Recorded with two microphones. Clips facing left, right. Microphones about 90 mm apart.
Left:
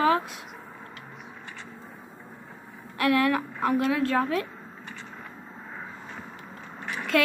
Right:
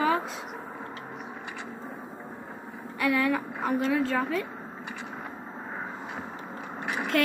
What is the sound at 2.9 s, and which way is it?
A woman's voice, 70° left (ahead or behind).